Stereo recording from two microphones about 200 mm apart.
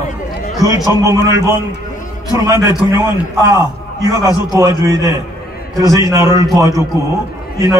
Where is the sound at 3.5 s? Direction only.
20° right (ahead or behind).